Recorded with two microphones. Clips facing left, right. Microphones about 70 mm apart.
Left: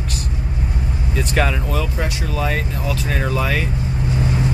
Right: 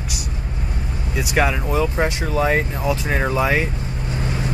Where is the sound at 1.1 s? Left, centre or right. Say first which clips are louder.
Right 1 dB; centre.